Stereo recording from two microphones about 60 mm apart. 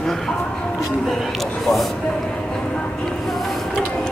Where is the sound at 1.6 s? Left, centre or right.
Centre.